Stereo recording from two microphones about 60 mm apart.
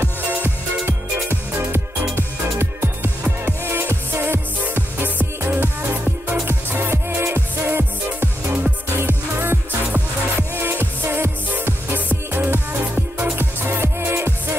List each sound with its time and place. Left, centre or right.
0.0 s music: right